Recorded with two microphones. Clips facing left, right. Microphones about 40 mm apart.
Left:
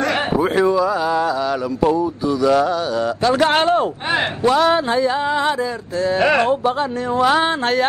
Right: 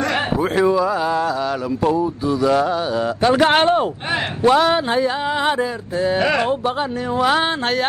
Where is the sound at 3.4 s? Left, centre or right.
Centre.